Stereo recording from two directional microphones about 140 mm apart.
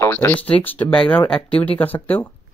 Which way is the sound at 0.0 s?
15° left (ahead or behind).